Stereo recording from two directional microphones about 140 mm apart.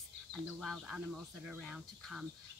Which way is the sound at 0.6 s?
5° right (ahead or behind).